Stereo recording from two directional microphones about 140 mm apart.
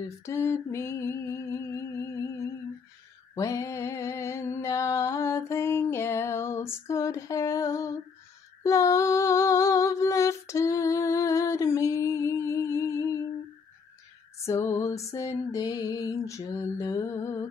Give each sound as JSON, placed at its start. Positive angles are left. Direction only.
{"t": 0.2, "sound": "a sound", "side_deg": 20}
{"t": 3.3, "sound": "mantra", "side_deg": 20}
{"t": 8.6, "sound": "humming", "side_deg": 20}
{"t": 14.4, "sound": "music", "side_deg": 20}